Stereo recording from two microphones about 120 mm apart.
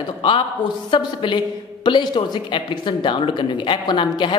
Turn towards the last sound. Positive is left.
turn(degrees=40)  # may be behind; listen again after turning